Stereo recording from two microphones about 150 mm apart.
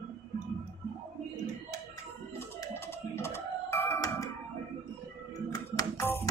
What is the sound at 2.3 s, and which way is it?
Music, 15° left (ahead or behind).